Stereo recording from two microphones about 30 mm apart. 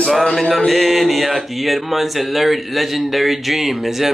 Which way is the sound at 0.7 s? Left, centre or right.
Centre.